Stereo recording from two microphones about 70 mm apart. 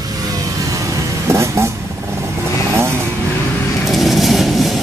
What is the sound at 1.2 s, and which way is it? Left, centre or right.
Vehicle, right.